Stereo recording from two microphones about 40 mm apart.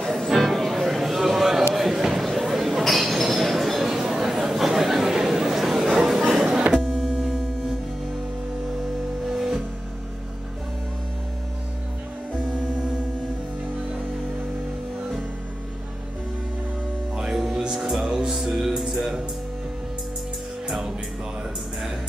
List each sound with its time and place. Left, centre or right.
0.1 s music: centre
2.0 s a sound: centre
2.8 s chink: centre
4.0 s chatter: centre
5.1 s a sound: centre
6.8 s music: centre
7.1 s music: centre
9.3 s music: centre
17.1 s music: centre